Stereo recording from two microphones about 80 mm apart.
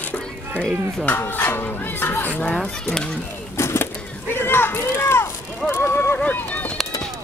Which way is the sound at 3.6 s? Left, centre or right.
Left.